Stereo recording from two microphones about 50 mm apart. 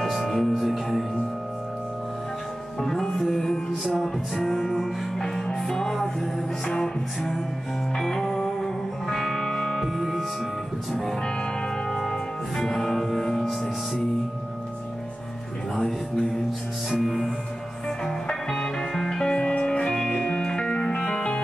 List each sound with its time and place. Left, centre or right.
0.0 s music: centre
2.8 s music: centre
9.9 s music: centre
13.4 s music: centre
15.7 s music: centre